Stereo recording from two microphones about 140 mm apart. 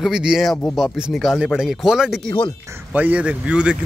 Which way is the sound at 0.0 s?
5° right (ahead or behind).